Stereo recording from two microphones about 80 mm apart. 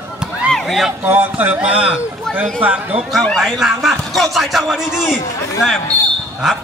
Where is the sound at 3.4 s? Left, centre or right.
Centre.